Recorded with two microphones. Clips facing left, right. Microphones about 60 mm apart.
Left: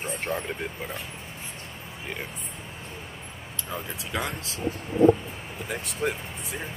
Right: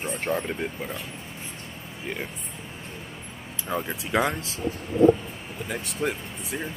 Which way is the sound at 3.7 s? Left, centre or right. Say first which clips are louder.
Right 6 dB; centre.